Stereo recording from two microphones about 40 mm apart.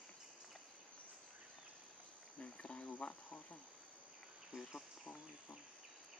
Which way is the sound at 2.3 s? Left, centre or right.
Left.